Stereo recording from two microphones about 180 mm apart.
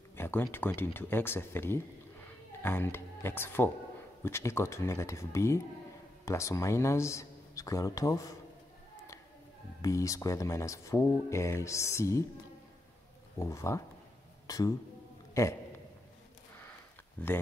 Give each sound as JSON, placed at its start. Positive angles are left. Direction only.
{"t": 0.1, "sound": "speech", "side_deg": 10}
{"t": 9.8, "sound": "speech", "side_deg": 20}
{"t": 13.4, "sound": "speech", "side_deg": 15}
{"t": 17.2, "sound": "speech", "side_deg": 10}